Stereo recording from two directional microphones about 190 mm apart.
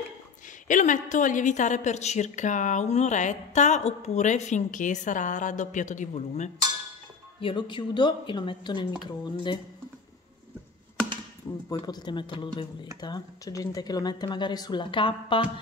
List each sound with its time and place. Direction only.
0.7 s a woman's voice: 40° left (ahead or behind)
7.3 s speech: 25° left (ahead or behind)
11.7 s speech: 20° left (ahead or behind)